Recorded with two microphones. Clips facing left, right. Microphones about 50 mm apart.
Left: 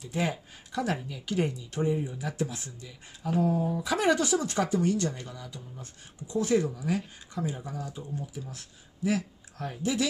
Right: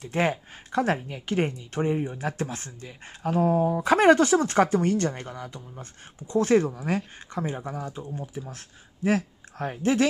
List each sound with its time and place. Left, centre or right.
0.0 s speech: right